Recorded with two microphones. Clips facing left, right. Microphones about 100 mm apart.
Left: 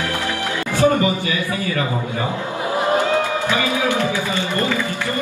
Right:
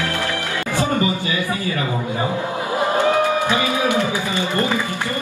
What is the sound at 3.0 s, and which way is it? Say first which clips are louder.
Music: right 2 dB; 20° right (ahead or behind).